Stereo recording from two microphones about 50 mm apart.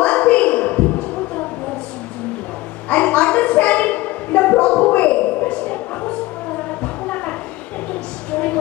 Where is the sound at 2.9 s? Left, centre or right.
Left.